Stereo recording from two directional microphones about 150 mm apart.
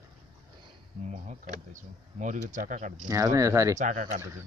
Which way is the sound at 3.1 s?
20° right (ahead or behind).